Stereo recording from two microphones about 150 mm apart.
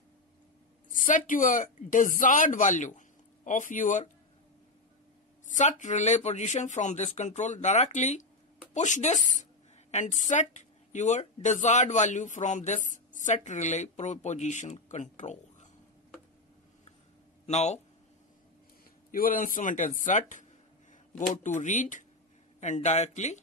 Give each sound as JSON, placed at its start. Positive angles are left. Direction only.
{"t": 0.9, "sound": "a man's voice", "side_deg": 60}
{"t": 5.5, "sound": "a woman's voice", "side_deg": 55}
{"t": 17.5, "sound": "speech", "side_deg": 50}
{"t": 19.1, "sound": "a man's voice", "side_deg": 65}